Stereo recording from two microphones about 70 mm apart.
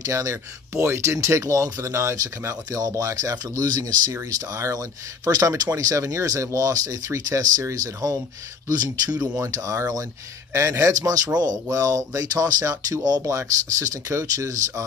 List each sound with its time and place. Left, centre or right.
0.0 s speech: right
4.1 s speech: right
8.6 s speech: right
9.4 s speech: right
10.5 s speech: right
13.2 s speech: right